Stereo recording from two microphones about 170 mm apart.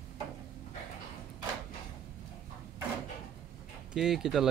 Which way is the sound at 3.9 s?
Centre (ahead or behind).